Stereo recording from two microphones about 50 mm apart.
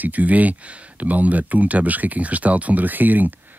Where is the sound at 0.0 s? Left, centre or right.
Right.